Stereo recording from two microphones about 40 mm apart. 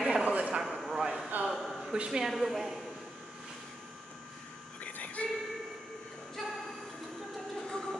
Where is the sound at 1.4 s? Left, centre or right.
Right.